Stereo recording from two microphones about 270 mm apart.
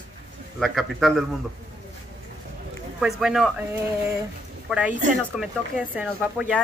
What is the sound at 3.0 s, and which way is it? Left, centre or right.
Speech, centre.